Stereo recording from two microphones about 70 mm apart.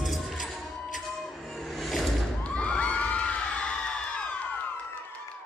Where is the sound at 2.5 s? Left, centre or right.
Centre.